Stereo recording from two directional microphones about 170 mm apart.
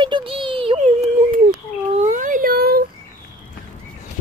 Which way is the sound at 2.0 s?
50° right (ahead or behind).